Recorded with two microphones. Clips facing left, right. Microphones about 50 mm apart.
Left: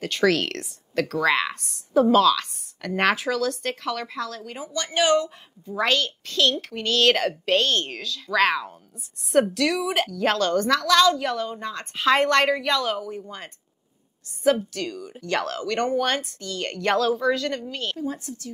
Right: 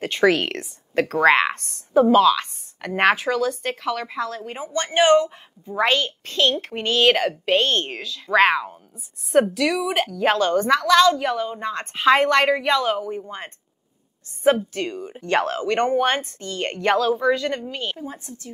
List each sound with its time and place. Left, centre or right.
0.0 s speech: right
1.0 s speech: right
2.0 s a woman's voice: centre
4.2 s a woman's voice: right
9.3 s a woman's voice: centre
10.9 s a woman's voice: centre; by 16.8 s right
16.8 s a woman's voice: centre